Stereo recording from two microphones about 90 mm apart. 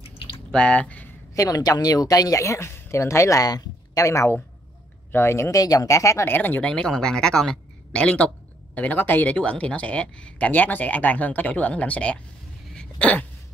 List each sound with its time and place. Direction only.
0.5 s speech: 10° left (ahead or behind)
1.3 s a woman's voice: 40° left (ahead or behind)
6.2 s speech: 20° left (ahead or behind)
12.7 s a sound: 15° left (ahead or behind)